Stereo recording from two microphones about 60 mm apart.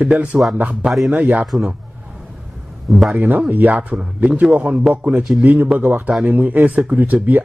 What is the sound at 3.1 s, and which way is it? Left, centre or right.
Speech, right.